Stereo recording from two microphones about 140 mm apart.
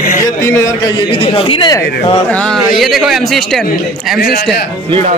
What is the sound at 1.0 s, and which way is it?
Speech, 40° left (ahead or behind).